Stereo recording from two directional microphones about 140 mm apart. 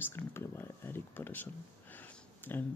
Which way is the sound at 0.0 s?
15° left (ahead or behind).